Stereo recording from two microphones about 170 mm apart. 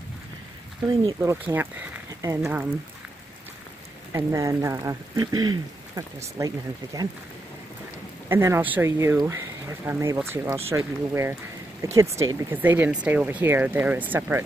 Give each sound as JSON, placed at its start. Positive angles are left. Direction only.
{"t": 1.0, "sound": "speech", "side_deg": -15}
{"t": 4.1, "sound": "speech", "side_deg": -20}
{"t": 8.3, "sound": "speech", "side_deg": -15}